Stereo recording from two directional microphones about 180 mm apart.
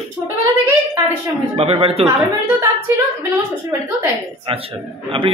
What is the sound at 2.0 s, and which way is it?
Speech, 10° right (ahead or behind).